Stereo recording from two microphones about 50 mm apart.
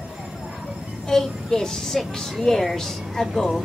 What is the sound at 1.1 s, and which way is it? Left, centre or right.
Speech, centre.